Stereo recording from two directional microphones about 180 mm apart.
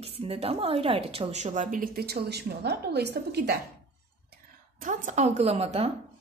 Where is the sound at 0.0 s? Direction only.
35° right (ahead or behind); by 3.5 s 65° right (ahead or behind).